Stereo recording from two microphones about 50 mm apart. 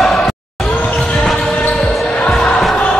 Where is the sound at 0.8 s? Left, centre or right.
Centre.